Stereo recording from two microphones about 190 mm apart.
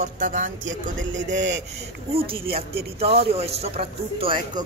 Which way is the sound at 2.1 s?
30° right (ahead or behind).